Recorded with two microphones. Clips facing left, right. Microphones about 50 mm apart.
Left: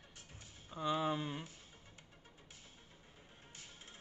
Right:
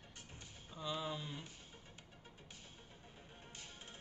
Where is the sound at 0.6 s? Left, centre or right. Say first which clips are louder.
Left 7 dB; left.